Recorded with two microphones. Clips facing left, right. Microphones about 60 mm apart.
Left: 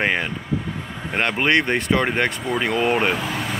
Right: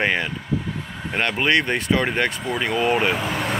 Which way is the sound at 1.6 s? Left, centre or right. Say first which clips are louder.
Left 1 dB; centre.